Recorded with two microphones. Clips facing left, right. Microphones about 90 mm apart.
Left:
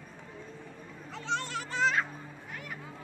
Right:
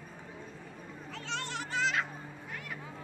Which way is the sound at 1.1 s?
30° left (ahead or behind).